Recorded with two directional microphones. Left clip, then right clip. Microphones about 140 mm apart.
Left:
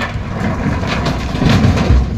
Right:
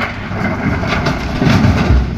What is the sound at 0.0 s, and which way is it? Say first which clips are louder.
Vehicle: right 2 dB; 20° left (ahead or behind).